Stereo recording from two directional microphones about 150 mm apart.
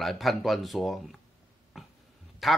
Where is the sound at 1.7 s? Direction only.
Centre (ahead or behind).